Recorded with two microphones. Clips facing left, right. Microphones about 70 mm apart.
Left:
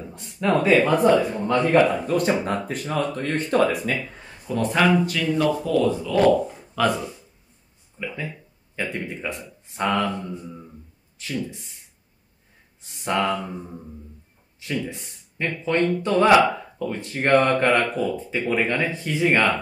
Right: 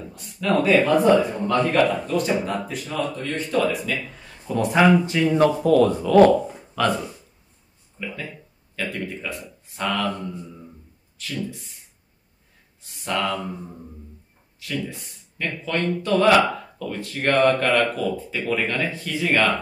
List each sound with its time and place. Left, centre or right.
0.1 s speech: left
2.1 s speech: left
4.6 s speech: centre
5.0 s speech: right
5.4 s speech: right
6.8 s speech: centre
8.0 s speech: centre
8.7 s speech: left
11.1 s speech: left
12.9 s speech: left
14.6 s speech: left